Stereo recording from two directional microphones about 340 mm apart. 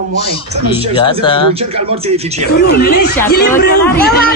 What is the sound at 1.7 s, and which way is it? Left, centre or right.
Speech, centre.